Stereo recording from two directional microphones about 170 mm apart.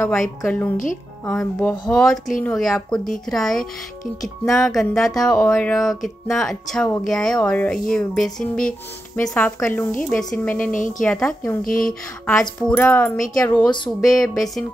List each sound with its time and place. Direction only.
0.4 s speech: 10° left (ahead or behind)
10.7 s a woman's voice: 50° left (ahead or behind)
11.0 s speech: 5° left (ahead or behind)
11.6 s speech: 55° left (ahead or behind)
12.3 s speech: 5° left (ahead or behind)